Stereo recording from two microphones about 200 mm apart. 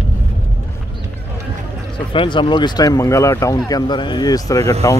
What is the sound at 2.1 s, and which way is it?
Speech, 25° left (ahead or behind).